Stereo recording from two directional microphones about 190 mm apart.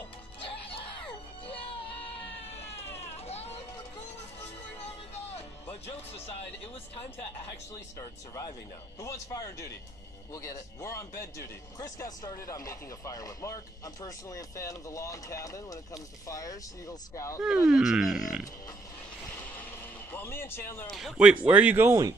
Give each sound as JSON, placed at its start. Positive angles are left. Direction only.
{"t": 2.6, "sound": "a sound", "side_deg": 15}
{"t": 3.3, "sound": "a sound", "side_deg": 35}
{"t": 5.3, "sound": "music", "side_deg": 30}
{"t": 8.0, "sound": "speech", "side_deg": 20}
{"t": 17.4, "sound": "speech", "side_deg": -5}
{"t": 20.1, "sound": "speech", "side_deg": 10}
{"t": 20.9, "sound": "speech", "side_deg": -5}